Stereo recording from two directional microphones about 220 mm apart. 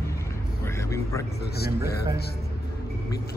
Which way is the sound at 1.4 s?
45° left (ahead or behind).